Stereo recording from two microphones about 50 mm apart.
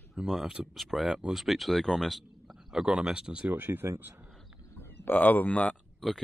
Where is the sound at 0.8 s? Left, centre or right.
Centre.